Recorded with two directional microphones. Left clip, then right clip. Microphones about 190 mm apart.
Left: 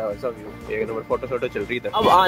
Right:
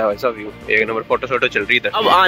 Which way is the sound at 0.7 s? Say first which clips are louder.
Right 8 dB; 5° right (ahead or behind).